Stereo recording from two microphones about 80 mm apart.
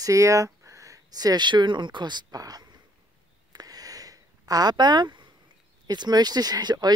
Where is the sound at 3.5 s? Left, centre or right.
Right.